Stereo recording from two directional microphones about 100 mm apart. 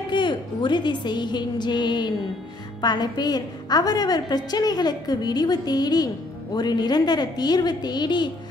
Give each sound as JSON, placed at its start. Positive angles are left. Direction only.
{"t": 0.1, "sound": "a woman's voice", "side_deg": 50}